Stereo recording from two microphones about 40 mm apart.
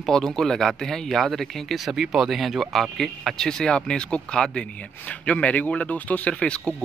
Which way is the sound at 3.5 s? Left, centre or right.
Centre.